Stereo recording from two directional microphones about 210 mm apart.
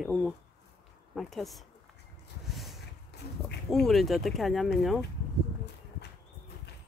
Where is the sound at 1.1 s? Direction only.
Centre (ahead or behind).